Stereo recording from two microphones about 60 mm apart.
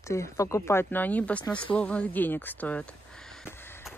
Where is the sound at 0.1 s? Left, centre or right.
Left.